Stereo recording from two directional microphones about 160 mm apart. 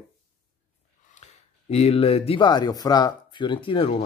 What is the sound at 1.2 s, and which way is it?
Speech, 40° left (ahead or behind).